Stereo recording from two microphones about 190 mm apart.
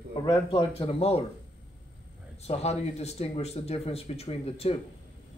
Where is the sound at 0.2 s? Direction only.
25° left (ahead or behind).